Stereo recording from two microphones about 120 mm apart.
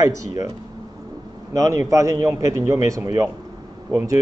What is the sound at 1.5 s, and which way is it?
A man's voice, 25° right (ahead or behind).